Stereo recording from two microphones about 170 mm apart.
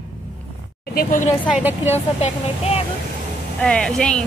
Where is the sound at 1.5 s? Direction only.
10° right (ahead or behind).